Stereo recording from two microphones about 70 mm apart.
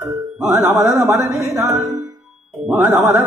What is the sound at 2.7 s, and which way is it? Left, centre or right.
Speech, right.